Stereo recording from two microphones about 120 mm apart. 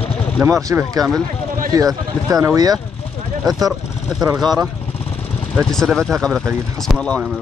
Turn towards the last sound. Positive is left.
turn(degrees=5)  # may be behind; listen again after turning